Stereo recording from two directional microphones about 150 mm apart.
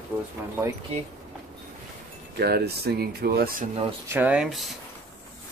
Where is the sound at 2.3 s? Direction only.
90° right.